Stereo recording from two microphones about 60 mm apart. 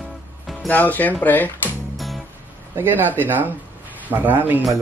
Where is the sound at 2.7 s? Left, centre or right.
Right.